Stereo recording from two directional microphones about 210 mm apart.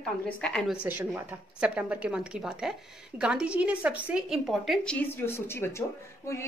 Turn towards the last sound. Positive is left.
turn(degrees=15)  # may be behind; listen again after turning